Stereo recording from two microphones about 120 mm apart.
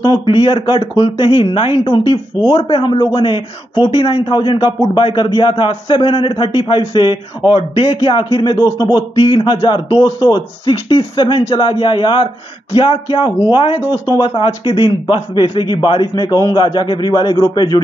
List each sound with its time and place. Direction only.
0.0 s a man's voice: 45° left (ahead or behind)